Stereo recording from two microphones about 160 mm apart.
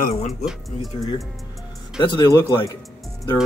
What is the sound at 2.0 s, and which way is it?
Speech, 30° left (ahead or behind).